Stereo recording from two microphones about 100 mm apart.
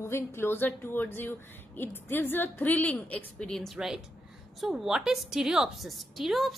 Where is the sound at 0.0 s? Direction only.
25° left (ahead or behind).